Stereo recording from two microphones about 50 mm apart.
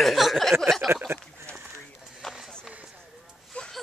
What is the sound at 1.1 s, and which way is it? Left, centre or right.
Speech, right.